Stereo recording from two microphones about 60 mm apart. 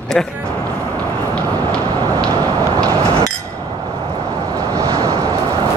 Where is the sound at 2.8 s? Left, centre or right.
Right.